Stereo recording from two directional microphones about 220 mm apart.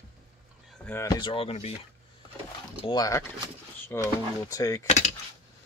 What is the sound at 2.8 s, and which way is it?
Speech, 15° left (ahead or behind).